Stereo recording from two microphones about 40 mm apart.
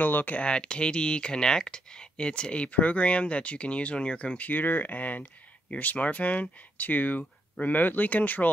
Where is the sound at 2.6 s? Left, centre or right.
Left.